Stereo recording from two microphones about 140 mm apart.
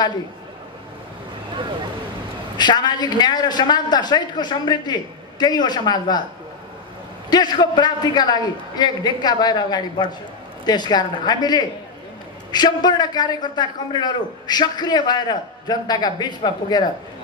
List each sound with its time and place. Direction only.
2.5 s a man's voice: 30° left (ahead or behind)
7.2 s a man's voice: 30° left (ahead or behind)